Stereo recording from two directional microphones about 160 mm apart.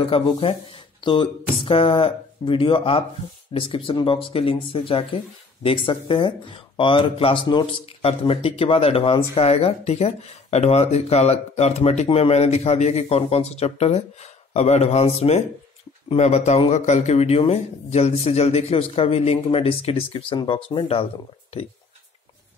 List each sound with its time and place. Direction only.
0.0 s speech: 35° left (ahead or behind)